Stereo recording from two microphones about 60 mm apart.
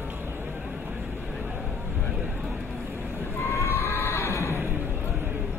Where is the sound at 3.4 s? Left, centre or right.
Left.